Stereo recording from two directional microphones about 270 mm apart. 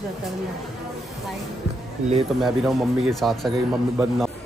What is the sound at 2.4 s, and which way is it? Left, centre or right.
Speech, centre.